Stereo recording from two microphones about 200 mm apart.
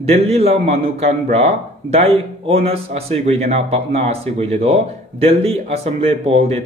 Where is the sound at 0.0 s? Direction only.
30° right (ahead or behind).